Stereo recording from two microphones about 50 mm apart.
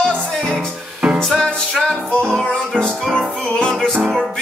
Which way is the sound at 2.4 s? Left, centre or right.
Centre.